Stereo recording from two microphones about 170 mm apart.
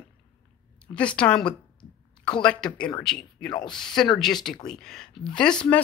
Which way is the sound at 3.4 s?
25° left (ahead or behind).